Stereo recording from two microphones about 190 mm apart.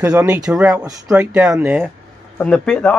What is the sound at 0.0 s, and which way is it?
Speech, 5° right (ahead or behind).